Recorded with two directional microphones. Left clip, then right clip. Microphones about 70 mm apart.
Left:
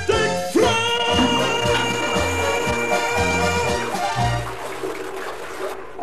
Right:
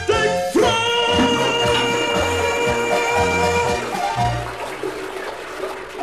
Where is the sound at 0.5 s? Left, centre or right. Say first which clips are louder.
Even; right.